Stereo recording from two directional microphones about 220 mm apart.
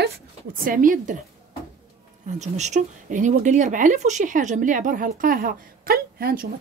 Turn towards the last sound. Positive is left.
turn(degrees=-45)  # may be behind; listen again after turning